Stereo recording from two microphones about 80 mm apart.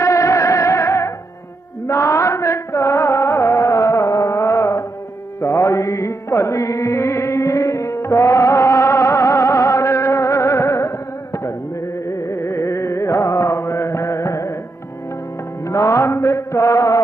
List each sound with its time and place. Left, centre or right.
0.0 s music: left
15.6 s music: left